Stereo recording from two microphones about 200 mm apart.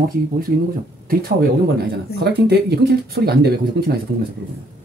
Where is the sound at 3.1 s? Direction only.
50° right (ahead or behind).